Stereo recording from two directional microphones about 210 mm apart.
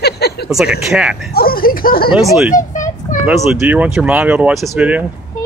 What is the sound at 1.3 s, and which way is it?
Speech, 45° left (ahead or behind).